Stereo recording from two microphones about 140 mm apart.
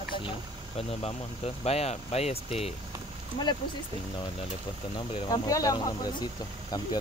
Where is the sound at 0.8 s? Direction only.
45° left (ahead or behind).